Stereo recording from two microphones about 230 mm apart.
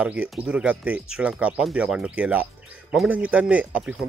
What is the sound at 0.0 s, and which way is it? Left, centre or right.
Speech, centre.